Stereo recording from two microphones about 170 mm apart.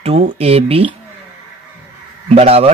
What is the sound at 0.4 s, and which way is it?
Speech, 35° right (ahead or behind).